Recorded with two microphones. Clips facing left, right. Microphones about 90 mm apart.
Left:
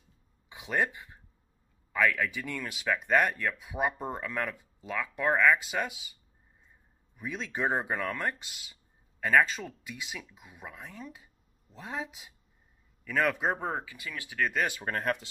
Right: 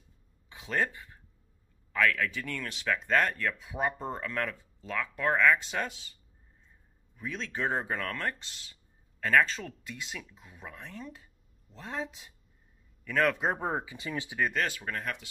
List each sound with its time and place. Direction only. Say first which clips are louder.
0.5 s a sound: left 1 dB; 15° left (ahead or behind)
1.9 s speech: even; 15° left (ahead or behind)
7.2 s speech: left 1 dB; 15° left (ahead or behind); by 13.8 s 5° right (ahead or behind)
13.8 s speech: right 5 dB; 25° right (ahead or behind)
14.5 s speech: left 1 dB; 15° left (ahead or behind)
14.9 s speech: left 5 dB; 45° left (ahead or behind)